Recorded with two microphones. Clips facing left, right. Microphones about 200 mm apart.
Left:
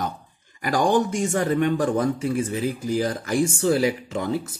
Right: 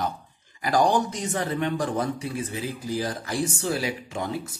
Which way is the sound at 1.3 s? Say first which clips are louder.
Left 5 dB; 50° left (ahead or behind).